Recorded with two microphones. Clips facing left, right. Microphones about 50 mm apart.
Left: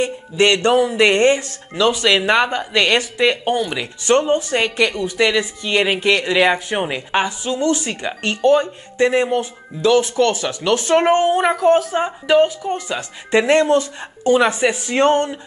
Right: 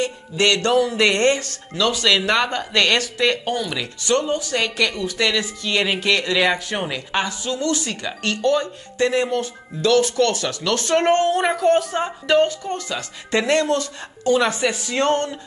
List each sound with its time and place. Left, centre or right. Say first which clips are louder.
0.0 s speech: left 4 dB; left